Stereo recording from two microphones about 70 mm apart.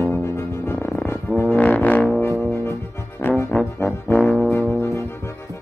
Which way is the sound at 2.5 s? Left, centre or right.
Left.